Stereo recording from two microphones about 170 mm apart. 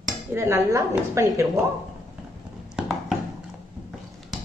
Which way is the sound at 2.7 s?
5° right (ahead or behind).